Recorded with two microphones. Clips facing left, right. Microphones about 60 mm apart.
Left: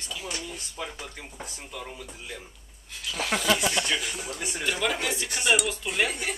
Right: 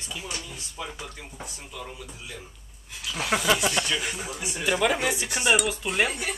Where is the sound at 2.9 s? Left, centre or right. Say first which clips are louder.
Right 2 dB; centre.